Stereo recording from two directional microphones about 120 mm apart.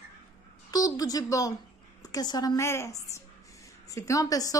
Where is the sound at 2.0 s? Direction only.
30° left (ahead or behind).